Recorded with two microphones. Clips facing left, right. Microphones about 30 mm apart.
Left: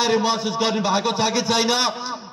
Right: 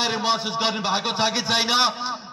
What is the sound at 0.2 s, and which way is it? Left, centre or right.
A man's voice, right.